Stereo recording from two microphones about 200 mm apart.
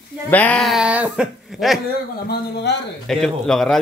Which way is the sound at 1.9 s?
50° left (ahead or behind).